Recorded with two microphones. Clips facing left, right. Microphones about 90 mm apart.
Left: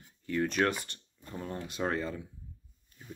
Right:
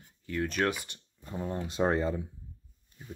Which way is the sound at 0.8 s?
15° right (ahead or behind).